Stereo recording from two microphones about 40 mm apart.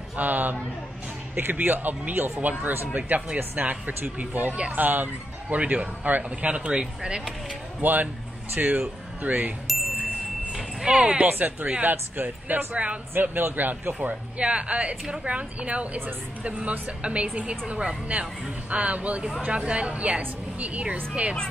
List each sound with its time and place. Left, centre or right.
0.1 s a man's voice: right
3.1 s speech: right
5.5 s a woman's voice: right
6.7 s speech: centre
7.8 s speech: right
10.9 s speech: right
11.2 s speech: right
12.7 s a woman's voice: right
13.1 s speech: right
14.4 s a woman's voice: right